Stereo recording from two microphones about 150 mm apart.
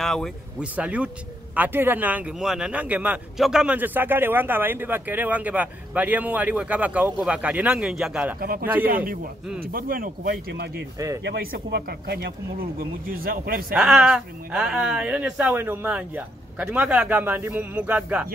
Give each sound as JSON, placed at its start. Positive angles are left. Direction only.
{"t": 0.0, "sound": "speech", "side_deg": 0}
{"t": 0.7, "sound": "speech", "side_deg": -10}
{"t": 8.4, "sound": "speech", "side_deg": -80}
{"t": 12.7, "sound": "speech", "side_deg": -75}
{"t": 13.7, "sound": "speech", "side_deg": -5}